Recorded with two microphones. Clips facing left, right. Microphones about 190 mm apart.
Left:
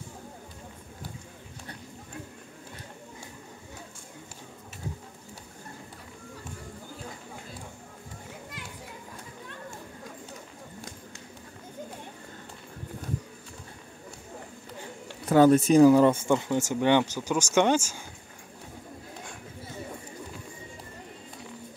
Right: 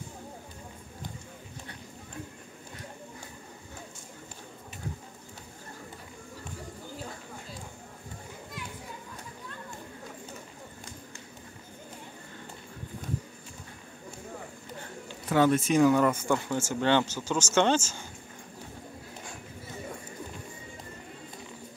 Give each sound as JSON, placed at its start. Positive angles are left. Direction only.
{"t": 15.2, "sound": "speech", "side_deg": 40}